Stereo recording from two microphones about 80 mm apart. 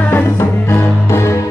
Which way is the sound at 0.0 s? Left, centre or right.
Left.